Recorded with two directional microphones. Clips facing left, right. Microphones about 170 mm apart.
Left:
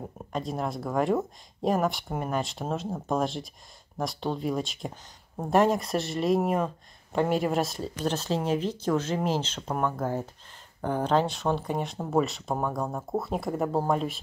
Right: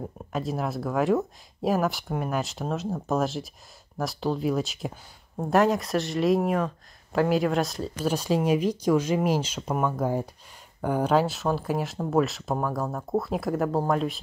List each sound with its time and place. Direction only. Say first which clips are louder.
0.3 s speech: right 2 dB; 5° right (ahead or behind)
8.1 s speech: right 4 dB; 10° right (ahead or behind)